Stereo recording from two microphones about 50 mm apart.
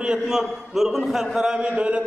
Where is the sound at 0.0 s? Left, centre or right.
Centre.